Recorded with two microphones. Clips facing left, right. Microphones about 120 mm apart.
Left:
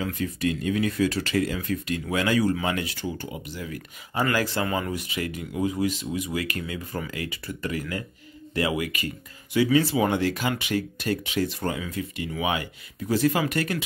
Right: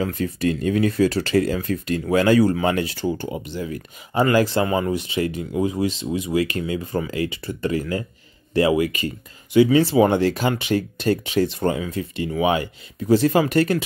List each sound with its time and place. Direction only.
0.0 s speech: 35° right (ahead or behind)